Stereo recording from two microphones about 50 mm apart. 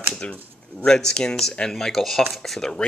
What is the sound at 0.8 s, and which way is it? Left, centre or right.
Speech, centre.